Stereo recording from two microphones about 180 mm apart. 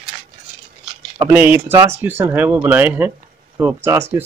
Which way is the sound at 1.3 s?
10° right (ahead or behind).